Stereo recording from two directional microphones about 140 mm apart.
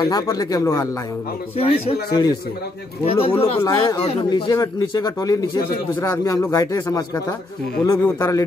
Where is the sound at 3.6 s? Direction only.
20° left (ahead or behind).